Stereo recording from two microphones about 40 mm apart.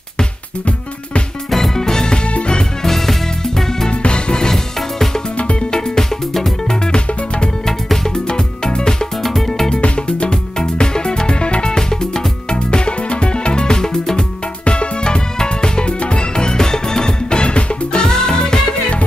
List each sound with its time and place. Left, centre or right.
1.5 s music: centre
2.3 s music: left
2.8 s music: centre
3.9 s music: left
5.4 s music: left
5.7 s music: centre
9.2 s music: centre
9.7 s music: left
14.6 s music: left